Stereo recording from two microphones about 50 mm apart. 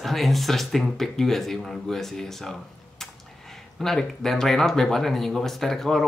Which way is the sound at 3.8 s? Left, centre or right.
Centre.